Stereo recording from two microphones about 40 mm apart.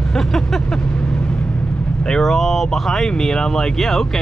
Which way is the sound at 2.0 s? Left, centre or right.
Centre.